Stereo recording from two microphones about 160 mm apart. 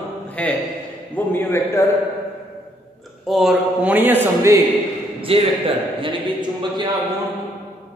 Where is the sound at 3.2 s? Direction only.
Centre (ahead or behind).